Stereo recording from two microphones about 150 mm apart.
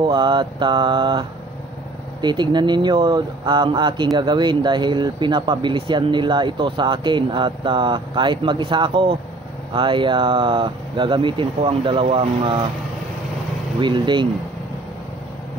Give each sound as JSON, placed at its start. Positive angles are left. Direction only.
{"t": 0.0, "sound": "speech", "side_deg": -30}
{"t": 2.2, "sound": "speech", "side_deg": -30}
{"t": 13.7, "sound": "speech", "side_deg": -30}